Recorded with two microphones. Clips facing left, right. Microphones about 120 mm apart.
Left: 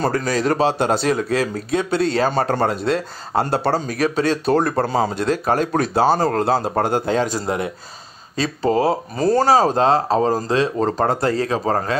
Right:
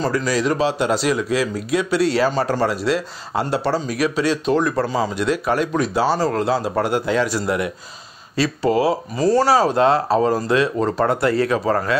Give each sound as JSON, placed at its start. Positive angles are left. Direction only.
{"t": 0.0, "sound": "speech", "side_deg": 50}
{"t": 8.8, "sound": "speech", "side_deg": 45}